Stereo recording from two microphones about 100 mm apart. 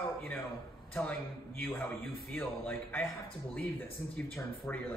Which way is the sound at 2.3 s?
20° left (ahead or behind).